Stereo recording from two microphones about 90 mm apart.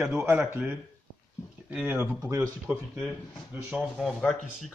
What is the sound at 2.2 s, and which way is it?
Speech, 40° right (ahead or behind).